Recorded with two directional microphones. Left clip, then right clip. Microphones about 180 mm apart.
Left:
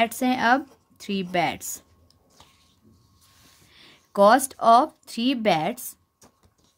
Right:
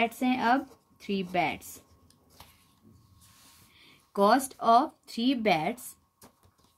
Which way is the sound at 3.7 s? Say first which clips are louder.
Left 7 dB; 45° left (ahead or behind).